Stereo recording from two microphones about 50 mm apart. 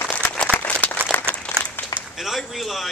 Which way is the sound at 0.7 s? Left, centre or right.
Left.